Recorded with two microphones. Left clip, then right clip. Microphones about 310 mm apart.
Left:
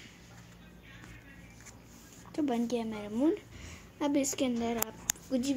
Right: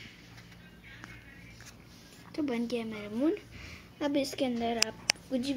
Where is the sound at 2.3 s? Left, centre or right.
Centre.